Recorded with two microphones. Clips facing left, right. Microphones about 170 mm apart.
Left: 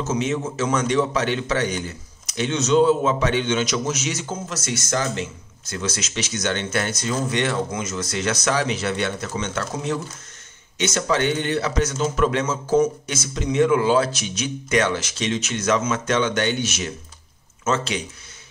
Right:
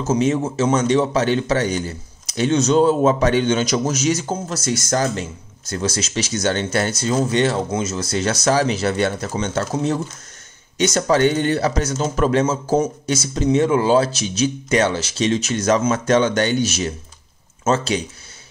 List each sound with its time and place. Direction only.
0.0 s a man's voice: 35° right (ahead or behind)